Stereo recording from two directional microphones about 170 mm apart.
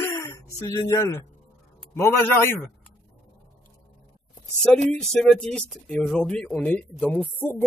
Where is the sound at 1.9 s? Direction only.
15° left (ahead or behind).